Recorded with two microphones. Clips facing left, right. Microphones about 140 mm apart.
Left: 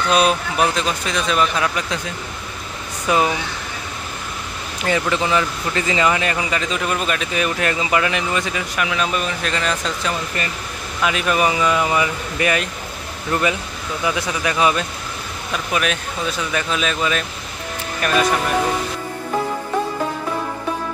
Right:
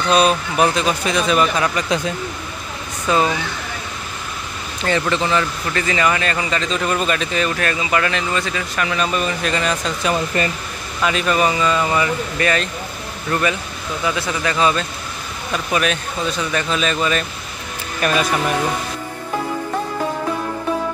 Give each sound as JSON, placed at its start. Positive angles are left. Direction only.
{"t": 0.1, "sound": "speech", "side_deg": 0}
{"t": 3.1, "sound": "speech", "side_deg": 10}
{"t": 4.8, "sound": "speech", "side_deg": 10}